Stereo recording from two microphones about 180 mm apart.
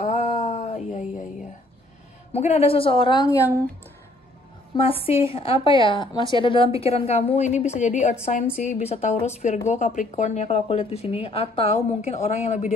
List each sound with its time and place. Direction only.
0.0 s a sound: 35° left (ahead or behind)
2.3 s a woman's voice: 35° left (ahead or behind); by 3.6 s 15° left (ahead or behind)
4.7 s a woman's voice: 30° left (ahead or behind)